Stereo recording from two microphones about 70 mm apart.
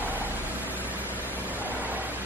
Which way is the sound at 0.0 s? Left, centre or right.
Right.